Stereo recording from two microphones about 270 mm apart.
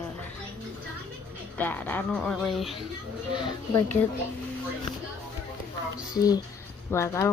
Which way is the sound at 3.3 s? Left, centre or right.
Centre.